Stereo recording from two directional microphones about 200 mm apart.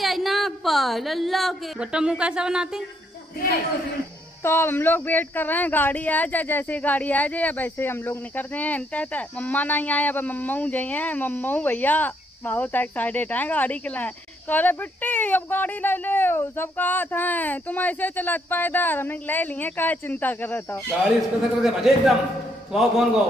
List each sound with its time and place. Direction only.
0.0 s a woman's voice: centre (ahead or behind)
3.3 s a man's voice: 50° left (ahead or behind)
4.4 s speech: 10° left (ahead or behind)
21.6 s a man's voice: centre (ahead or behind)